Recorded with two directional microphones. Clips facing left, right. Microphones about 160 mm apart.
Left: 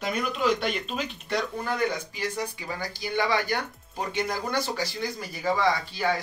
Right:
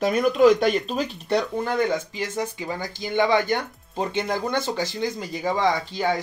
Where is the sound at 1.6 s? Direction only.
20° right (ahead or behind).